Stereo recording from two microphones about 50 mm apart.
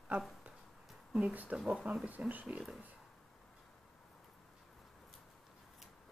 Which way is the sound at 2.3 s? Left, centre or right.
Right.